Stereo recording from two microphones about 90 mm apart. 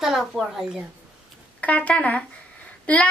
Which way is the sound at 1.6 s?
15° left (ahead or behind).